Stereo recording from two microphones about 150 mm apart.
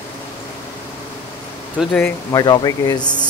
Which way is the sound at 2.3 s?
25° left (ahead or behind).